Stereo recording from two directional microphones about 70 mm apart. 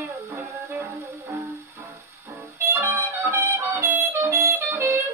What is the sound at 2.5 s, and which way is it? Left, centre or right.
Music, right.